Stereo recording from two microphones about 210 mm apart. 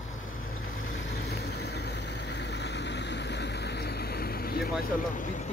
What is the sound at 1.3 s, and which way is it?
Vehicle, 50° left (ahead or behind).